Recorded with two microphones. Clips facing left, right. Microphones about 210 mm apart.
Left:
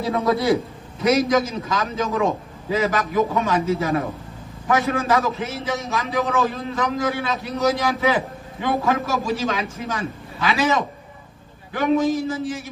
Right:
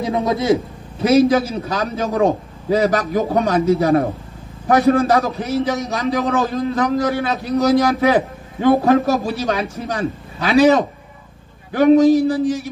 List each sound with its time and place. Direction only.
0.0 s a man's voice: 20° right (ahead or behind)
1.0 s a man's voice: 30° right (ahead or behind)